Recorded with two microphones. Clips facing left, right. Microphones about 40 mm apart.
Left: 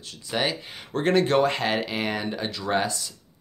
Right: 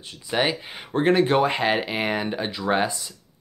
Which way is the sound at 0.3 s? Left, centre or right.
Centre.